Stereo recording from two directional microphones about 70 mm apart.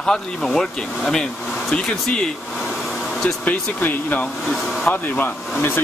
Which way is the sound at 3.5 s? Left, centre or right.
Left.